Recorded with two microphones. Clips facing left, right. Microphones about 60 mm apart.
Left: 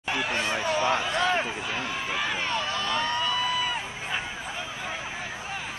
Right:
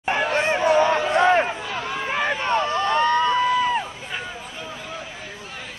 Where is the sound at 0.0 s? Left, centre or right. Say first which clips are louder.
Right 7 dB; right.